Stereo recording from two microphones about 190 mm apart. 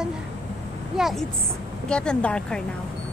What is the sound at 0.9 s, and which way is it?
Speech, centre (ahead or behind).